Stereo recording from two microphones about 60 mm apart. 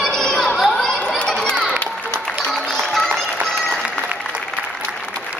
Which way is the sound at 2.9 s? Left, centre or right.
Centre.